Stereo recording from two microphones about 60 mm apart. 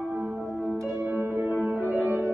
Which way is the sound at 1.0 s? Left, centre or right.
Right.